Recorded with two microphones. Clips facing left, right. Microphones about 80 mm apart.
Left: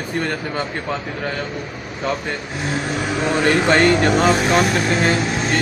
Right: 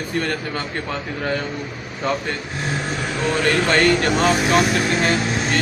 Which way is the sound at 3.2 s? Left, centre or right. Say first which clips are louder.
Left 2 dB; centre.